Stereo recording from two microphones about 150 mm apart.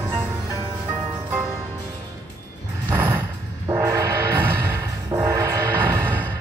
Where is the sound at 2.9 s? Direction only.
15° right (ahead or behind).